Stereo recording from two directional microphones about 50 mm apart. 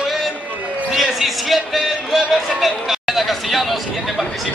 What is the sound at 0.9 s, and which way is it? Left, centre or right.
A man's voice, centre.